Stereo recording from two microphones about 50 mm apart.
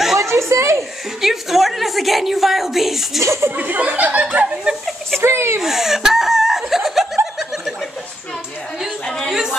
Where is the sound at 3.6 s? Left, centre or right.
Right.